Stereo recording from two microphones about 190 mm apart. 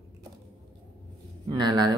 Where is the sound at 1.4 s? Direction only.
20° right (ahead or behind).